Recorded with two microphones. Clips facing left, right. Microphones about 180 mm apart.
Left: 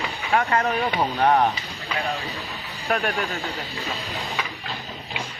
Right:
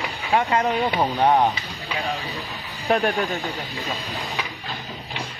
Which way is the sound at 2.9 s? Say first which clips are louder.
Right 4 dB; 30° right (ahead or behind).